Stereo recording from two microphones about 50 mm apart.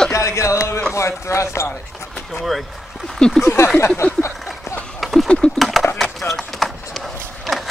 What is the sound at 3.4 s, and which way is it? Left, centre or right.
Speech, left.